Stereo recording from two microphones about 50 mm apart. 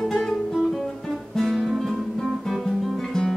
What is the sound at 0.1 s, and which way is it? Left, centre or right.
Guitar, centre.